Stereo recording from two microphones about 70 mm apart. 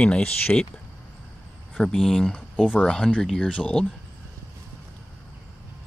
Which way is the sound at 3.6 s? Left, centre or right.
Centre.